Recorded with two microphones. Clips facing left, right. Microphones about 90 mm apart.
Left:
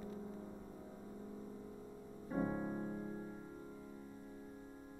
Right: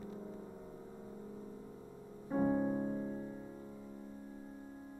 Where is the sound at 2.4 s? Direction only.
30° right (ahead or behind).